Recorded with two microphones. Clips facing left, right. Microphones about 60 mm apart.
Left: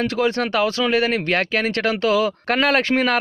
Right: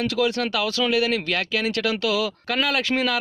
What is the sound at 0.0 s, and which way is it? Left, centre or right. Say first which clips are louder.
Speech: left 2 dB; left.